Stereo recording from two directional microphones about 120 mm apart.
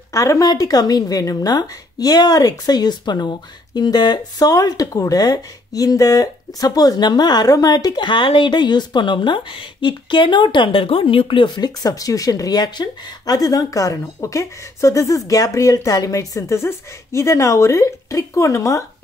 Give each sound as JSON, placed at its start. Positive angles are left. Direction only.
{"t": 0.1, "sound": "speech", "side_deg": 30}